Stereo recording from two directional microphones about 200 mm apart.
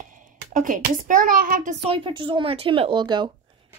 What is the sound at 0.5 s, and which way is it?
A child's voice, 40° right (ahead or behind).